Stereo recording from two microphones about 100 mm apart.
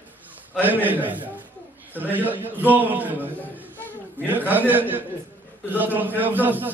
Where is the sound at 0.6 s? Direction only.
20° right (ahead or behind).